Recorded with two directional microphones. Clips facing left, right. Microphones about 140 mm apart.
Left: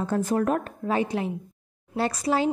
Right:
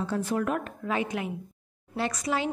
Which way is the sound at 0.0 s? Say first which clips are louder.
Left 4 dB; 45° left (ahead or behind).